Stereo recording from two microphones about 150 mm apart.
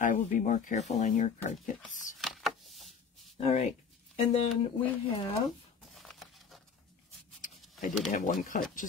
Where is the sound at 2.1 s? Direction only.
Centre (ahead or behind).